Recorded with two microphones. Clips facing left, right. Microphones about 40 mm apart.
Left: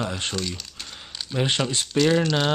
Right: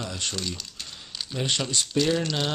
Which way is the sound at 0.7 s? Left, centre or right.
Centre.